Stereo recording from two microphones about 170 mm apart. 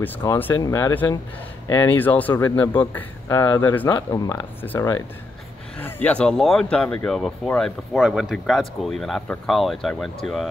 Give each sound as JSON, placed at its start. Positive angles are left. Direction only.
{"t": 0.0, "sound": "speech", "side_deg": 10}
{"t": 3.9, "sound": "speech", "side_deg": 20}